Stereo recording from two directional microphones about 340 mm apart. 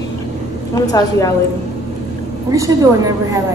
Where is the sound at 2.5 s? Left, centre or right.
Centre.